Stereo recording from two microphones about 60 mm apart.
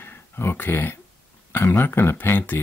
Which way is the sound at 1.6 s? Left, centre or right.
Left.